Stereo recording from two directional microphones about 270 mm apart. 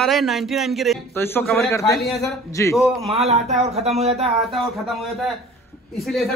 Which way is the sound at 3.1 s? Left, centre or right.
Right.